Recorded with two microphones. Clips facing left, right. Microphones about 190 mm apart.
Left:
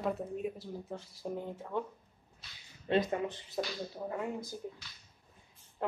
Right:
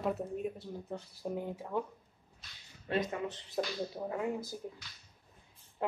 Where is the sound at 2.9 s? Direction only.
25° left (ahead or behind).